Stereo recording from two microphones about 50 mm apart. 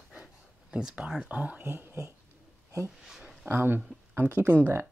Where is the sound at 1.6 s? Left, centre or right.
Right.